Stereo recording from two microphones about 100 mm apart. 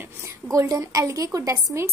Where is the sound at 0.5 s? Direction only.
35° right (ahead or behind).